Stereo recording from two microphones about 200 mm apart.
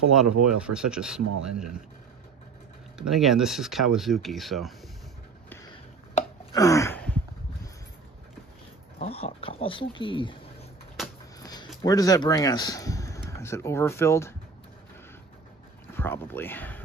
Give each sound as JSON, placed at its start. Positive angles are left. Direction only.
{"t": 0.1, "sound": "speech", "side_deg": -5}
{"t": 3.0, "sound": "speech", "side_deg": 0}
{"t": 6.5, "sound": "a sound", "side_deg": 15}
{"t": 9.0, "sound": "a sound", "side_deg": 30}
{"t": 11.8, "sound": "a man's voice", "side_deg": 20}
{"t": 15.9, "sound": "speech", "side_deg": 10}